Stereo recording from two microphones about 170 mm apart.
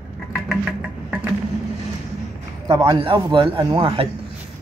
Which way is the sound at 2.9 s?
30° right (ahead or behind).